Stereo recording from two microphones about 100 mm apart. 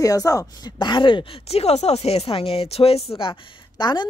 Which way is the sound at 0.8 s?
55° left (ahead or behind).